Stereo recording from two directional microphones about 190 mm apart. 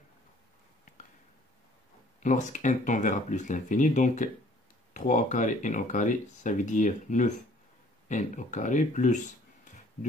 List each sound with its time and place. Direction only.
2.1 s speech: 40° left (ahead or behind)